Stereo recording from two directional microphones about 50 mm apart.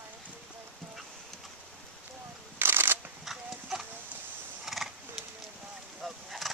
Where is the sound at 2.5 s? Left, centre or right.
Right.